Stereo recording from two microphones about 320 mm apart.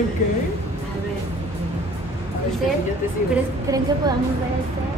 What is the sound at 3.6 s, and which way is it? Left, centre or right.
Speech, centre.